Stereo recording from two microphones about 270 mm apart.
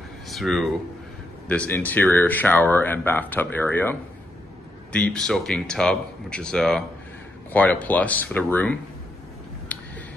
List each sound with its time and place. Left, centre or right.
0.3 s speech: centre
4.9 s speech: centre
9.7 s a sound: centre